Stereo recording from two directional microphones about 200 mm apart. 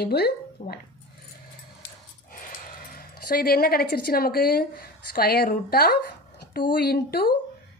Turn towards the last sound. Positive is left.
turn(degrees=50)  # may be behind; listen again after turning